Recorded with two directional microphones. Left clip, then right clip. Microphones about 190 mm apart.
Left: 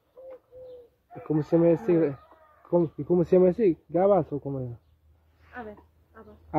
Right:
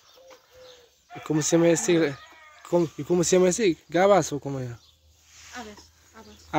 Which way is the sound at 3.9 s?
15° right (ahead or behind).